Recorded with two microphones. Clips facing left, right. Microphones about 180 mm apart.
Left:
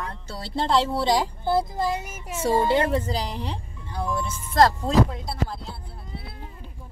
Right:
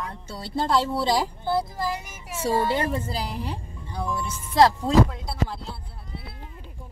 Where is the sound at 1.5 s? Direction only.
25° left (ahead or behind).